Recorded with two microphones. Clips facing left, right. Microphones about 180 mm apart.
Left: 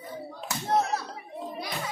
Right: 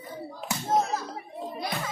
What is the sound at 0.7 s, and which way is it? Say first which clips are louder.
Clapping: even; 65° left (ahead or behind).